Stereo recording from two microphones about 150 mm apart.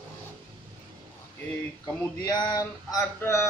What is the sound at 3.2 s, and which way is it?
Speech, 15° left (ahead or behind).